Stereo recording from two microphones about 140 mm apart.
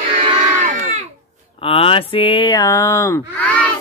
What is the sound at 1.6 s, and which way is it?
Speech, 40° left (ahead or behind).